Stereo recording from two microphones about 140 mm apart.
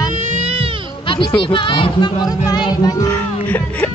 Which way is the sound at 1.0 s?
35° left (ahead or behind).